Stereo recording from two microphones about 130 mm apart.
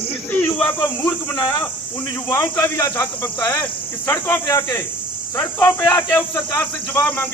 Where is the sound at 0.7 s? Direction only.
35° left (ahead or behind).